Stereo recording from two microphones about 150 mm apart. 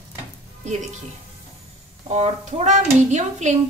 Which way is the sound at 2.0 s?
45° right (ahead or behind).